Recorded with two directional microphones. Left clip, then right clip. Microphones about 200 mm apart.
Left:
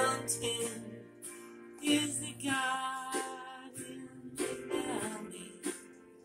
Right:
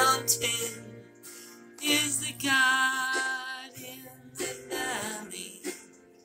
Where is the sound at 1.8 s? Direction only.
5° left (ahead or behind).